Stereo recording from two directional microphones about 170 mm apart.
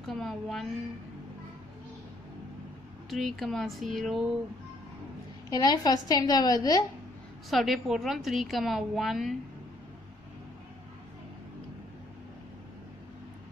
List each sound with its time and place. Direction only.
0.0 s a woman's voice: centre (ahead or behind)
3.1 s a woman's voice: centre (ahead or behind)
5.5 s a woman's voice: 20° left (ahead or behind)
7.4 s a woman's voice: centre (ahead or behind)